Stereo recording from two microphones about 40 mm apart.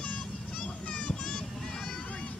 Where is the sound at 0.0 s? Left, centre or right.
Left.